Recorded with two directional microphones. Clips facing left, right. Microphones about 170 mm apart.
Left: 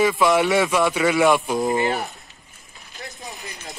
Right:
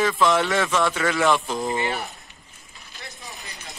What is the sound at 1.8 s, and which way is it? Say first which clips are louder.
Speech: left 4 dB; 40° left (ahead or behind).